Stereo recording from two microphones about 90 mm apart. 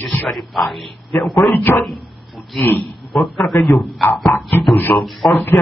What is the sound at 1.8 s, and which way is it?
Dog, centre (ahead or behind).